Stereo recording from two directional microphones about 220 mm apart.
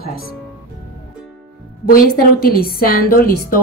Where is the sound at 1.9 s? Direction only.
40° left (ahead or behind).